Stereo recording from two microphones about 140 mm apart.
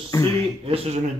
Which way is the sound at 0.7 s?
45° right (ahead or behind).